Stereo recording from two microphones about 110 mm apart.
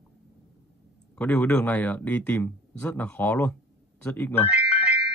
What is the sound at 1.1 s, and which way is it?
Speech, 15° left (ahead or behind).